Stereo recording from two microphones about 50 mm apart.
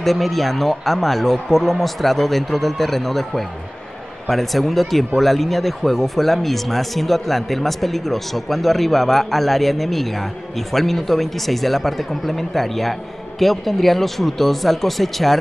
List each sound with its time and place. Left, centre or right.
0.0 s speech: centre